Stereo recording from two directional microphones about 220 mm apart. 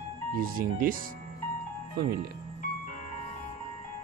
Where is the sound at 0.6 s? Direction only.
40° right (ahead or behind).